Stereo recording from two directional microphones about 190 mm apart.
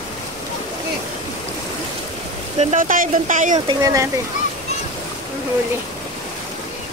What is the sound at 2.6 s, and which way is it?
Speech, 40° right (ahead or behind).